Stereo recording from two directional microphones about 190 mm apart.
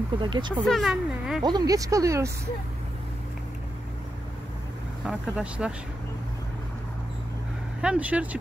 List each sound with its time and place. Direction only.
0.2 s speech: 25° right (ahead or behind)
0.7 s speech: centre (ahead or behind)
1.4 s speech: 20° right (ahead or behind)
5.0 s speech: 5° right (ahead or behind)
7.8 s speech: 5° right (ahead or behind)